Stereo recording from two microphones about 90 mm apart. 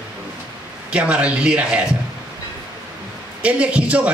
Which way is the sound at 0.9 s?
15° right (ahead or behind).